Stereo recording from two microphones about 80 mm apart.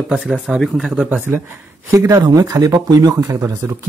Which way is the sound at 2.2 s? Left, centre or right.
Right.